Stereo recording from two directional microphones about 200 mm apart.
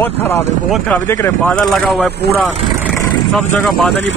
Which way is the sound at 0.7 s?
5° left (ahead or behind).